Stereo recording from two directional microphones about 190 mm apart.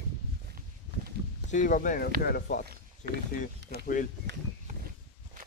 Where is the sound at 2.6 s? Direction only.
55° right (ahead or behind).